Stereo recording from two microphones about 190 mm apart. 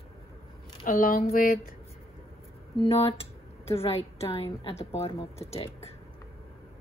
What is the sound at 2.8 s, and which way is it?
Speech, 30° left (ahead or behind).